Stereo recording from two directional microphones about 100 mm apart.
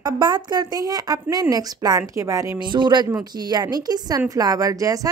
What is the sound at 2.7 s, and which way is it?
A woman's voice, 50° right (ahead or behind).